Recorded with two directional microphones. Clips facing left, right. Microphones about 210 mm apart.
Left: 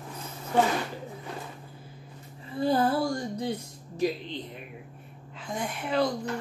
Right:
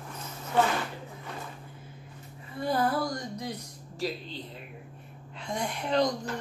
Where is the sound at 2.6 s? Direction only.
30° left (ahead or behind).